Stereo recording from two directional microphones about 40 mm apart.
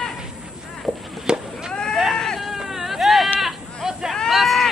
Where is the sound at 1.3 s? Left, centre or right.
Centre.